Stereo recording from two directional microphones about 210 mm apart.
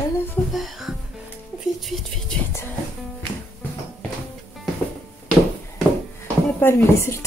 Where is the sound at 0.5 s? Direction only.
Centre (ahead or behind).